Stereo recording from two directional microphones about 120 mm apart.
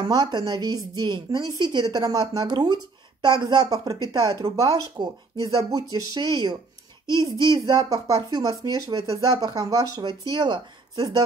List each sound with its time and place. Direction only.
0.0 s a woman's voice: 35° right (ahead or behind)